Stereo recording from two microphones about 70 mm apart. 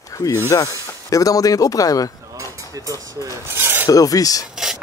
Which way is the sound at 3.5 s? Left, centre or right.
Right.